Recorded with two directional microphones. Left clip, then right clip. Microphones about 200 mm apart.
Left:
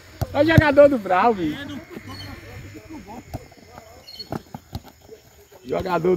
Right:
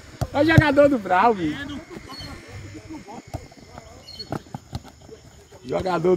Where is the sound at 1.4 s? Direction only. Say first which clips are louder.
Even; 25° left (ahead or behind).